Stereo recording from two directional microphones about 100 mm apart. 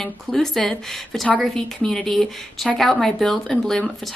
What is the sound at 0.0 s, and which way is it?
A woman's voice, 5° left (ahead or behind).